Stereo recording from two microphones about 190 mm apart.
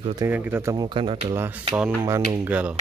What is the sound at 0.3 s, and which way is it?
Speech, 10° right (ahead or behind).